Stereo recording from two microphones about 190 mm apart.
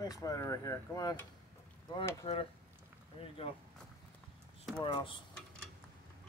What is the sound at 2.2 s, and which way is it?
Speech, 30° left (ahead or behind).